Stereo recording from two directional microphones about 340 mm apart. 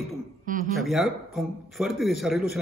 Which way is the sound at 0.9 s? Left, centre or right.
Centre.